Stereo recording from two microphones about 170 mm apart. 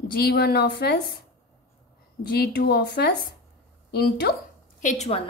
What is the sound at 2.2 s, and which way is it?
Speech, 65° left (ahead or behind).